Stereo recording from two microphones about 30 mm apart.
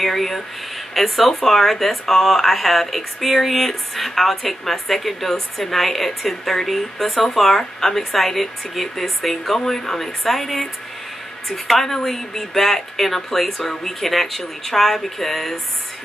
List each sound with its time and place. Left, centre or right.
0.0 s speech: centre
13.6 s speech: centre
14.0 s speech: centre